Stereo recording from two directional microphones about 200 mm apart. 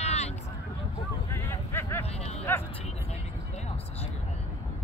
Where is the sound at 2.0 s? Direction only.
30° left (ahead or behind).